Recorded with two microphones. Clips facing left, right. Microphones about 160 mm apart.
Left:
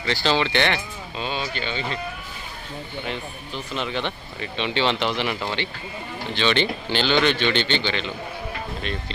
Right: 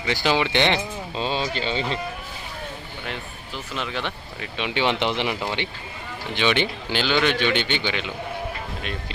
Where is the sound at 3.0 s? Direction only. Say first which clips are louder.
Even; centre (ahead or behind).